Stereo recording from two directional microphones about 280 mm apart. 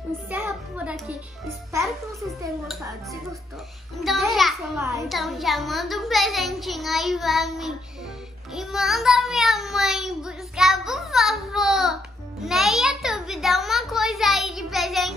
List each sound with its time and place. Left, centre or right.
0.3 s music: centre
4.0 s a child's voice: centre